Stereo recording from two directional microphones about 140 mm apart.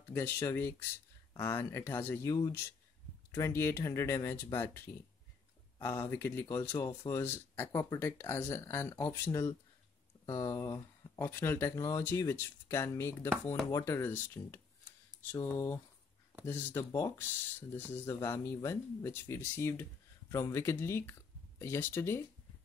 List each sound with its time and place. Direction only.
0.1 s speech: 20° left (ahead or behind)